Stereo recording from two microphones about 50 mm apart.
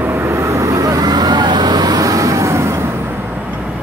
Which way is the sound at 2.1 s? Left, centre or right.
Right.